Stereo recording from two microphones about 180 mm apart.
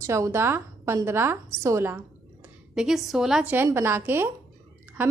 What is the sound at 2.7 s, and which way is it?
A woman's voice, 5° right (ahead or behind).